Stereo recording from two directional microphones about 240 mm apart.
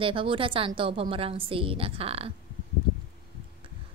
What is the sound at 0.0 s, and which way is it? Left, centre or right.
A woman's voice, right.